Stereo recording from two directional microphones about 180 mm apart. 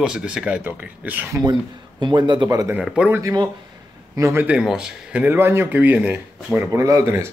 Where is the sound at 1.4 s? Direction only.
25° right (ahead or behind).